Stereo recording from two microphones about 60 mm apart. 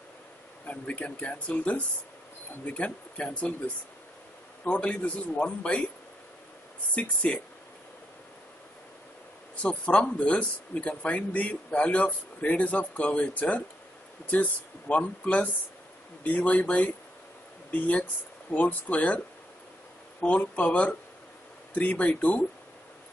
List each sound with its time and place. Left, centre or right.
0.7 s speech: left
7.0 s speech: left
9.6 s speech: centre